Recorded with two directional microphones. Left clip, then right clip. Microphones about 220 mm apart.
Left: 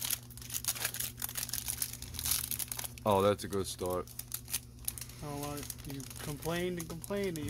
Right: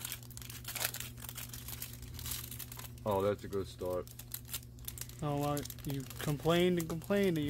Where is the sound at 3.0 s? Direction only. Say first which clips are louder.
Left 5 dB; 35° left (ahead or behind).